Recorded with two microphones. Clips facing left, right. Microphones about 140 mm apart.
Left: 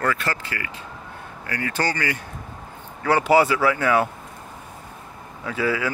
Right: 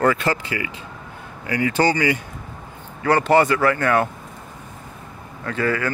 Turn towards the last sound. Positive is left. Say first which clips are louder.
# right 1 dB
turn(degrees=5)  # may be behind; listen again after turning